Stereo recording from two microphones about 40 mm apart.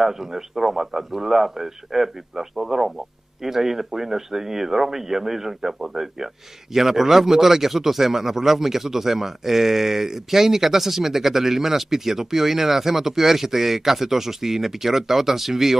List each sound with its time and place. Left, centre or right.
0.0 s speech: centre